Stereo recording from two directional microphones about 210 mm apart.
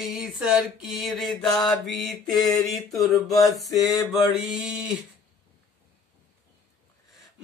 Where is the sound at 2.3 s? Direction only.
15° left (ahead or behind).